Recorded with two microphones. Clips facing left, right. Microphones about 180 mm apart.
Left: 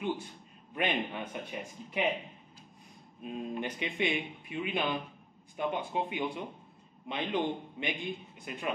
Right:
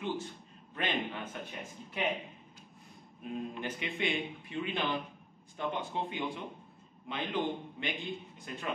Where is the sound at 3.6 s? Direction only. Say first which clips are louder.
Left 2 dB; 15° left (ahead or behind).